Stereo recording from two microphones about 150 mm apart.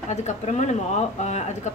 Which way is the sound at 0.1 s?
50° left (ahead or behind).